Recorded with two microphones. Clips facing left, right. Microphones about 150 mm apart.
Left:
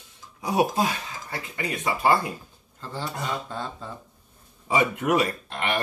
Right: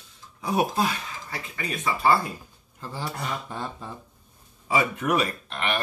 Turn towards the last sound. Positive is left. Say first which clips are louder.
# left 1 dB
turn(degrees=20)  # may be behind; listen again after turning